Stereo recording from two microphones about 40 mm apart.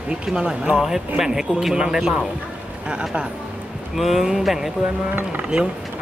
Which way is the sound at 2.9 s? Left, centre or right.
Right.